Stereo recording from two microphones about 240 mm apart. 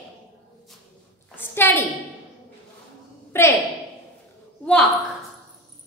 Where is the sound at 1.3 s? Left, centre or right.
Centre.